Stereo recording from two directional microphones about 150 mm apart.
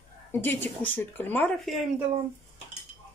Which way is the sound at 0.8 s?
10° left (ahead or behind).